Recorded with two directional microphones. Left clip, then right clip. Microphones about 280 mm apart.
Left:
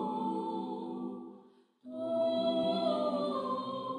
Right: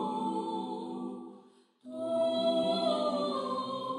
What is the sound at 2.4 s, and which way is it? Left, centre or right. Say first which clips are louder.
Music: right 2 dB; left.